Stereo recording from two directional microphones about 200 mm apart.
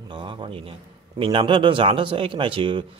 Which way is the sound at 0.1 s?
25° right (ahead or behind).